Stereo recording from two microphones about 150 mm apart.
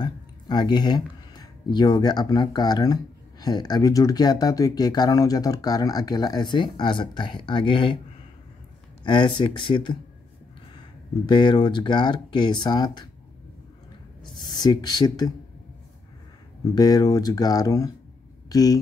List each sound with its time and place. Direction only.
0.0 s speech: 30° left (ahead or behind)
9.0 s speech: 30° left (ahead or behind)
11.2 s speech: 30° left (ahead or behind)
14.6 s speech: 25° left (ahead or behind)
16.7 s speech: 25° left (ahead or behind)